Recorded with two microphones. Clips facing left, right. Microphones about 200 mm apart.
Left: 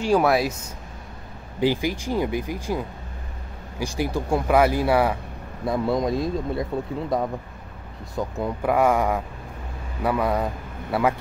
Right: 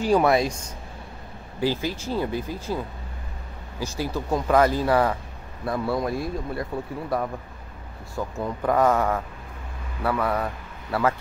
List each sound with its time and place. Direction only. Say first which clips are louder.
0.0 s speech: even; centre (ahead or behind)
1.6 s speech: left 3 dB; 15° left (ahead or behind)
3.8 s speech: left 3 dB; 15° left (ahead or behind)